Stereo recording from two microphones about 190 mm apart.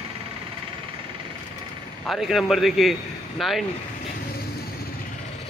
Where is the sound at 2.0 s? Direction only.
Centre (ahead or behind).